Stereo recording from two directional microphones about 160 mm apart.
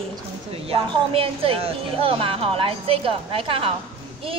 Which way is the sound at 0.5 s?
35° right (ahead or behind).